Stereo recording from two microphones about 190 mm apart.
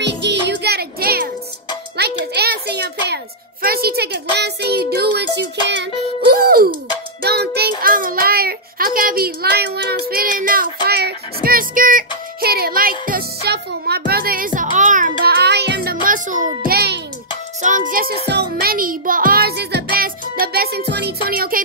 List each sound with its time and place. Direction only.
0.0 s music: 65° right (ahead or behind)
2.0 s a sound: 60° right (ahead or behind)
3.6 s a child's voice: 55° right (ahead or behind)
13.0 s music: 55° right (ahead or behind)
16.6 s music for children: 55° right (ahead or behind)
17.6 s music: 40° right (ahead or behind)